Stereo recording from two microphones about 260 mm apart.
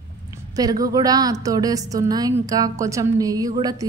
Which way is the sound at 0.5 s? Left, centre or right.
Centre.